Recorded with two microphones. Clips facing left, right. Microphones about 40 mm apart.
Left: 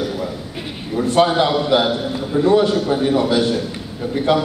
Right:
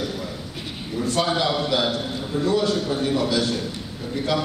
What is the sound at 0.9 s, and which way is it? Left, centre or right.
A man's voice, left.